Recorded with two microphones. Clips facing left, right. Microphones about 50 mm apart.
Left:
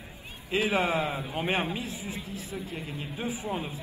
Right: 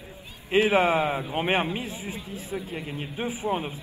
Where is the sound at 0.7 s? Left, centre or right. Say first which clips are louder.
Right 3 dB; right.